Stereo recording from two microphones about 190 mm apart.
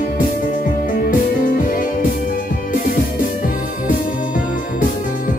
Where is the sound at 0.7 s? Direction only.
50° left (ahead or behind).